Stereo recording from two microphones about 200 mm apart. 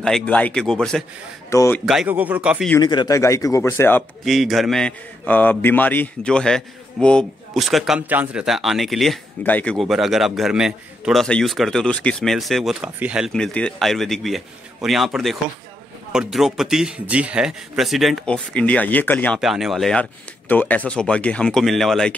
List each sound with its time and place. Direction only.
0.0 s a man's voice: 5° left (ahead or behind)
1.5 s speech: 15° left (ahead or behind)
1.9 s speech: 5° right (ahead or behind)
2.8 s speech: 20° left (ahead or behind)
4.2 s a man's voice: centre (ahead or behind)